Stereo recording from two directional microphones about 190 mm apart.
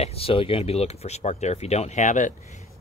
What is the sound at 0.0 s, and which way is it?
Speech, 30° left (ahead or behind).